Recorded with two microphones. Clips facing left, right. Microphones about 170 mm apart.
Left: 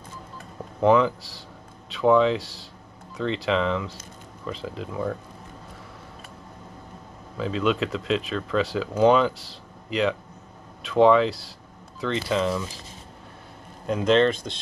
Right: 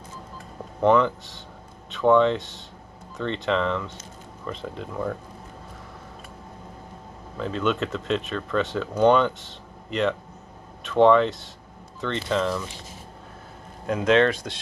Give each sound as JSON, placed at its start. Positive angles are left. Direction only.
{"t": 0.7, "sound": "speech", "side_deg": 5}
{"t": 3.4, "sound": "speech", "side_deg": 5}
{"t": 7.3, "sound": "speech", "side_deg": 0}
{"t": 11.2, "sound": "speech", "side_deg": 35}
{"t": 12.0, "sound": "speech", "side_deg": 5}
{"t": 13.8, "sound": "speech", "side_deg": 0}